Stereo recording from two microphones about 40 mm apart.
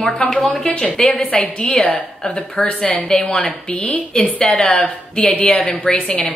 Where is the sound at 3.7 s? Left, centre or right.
Left.